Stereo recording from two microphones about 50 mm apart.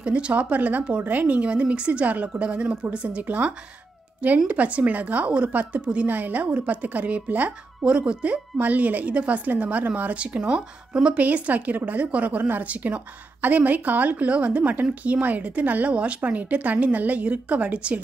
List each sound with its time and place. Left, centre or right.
0.0 s speech: right
6.0 s speech: right
7.8 s speech: centre